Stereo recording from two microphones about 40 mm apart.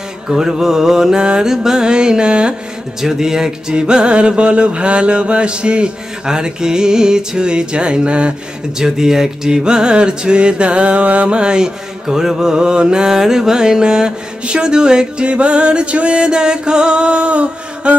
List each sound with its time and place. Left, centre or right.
0.3 s mantra: centre
1.5 s mantra: centre
3.0 s mantra: centre; by 8.4 s right
8.7 s mantra: centre; by 17.9 s right